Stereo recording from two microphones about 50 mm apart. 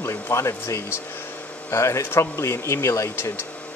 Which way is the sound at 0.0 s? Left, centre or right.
Left.